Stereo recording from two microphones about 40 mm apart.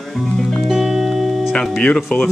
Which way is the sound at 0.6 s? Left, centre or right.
Centre.